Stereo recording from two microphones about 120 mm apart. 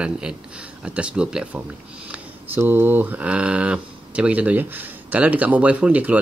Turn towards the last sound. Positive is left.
turn(degrees=-10)  # may be behind; listen again after turning